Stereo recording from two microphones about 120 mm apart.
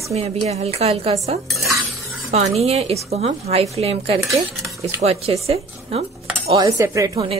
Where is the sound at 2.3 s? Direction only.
60° right (ahead or behind).